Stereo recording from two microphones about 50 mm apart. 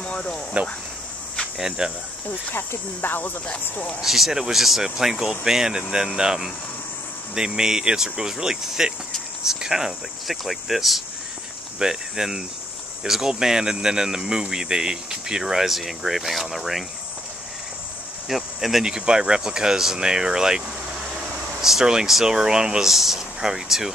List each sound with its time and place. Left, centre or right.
0.0 s a sound: centre
1.8 s speech: centre
3.0 s speech: left
4.0 s speech: centre
18.3 s speech: centre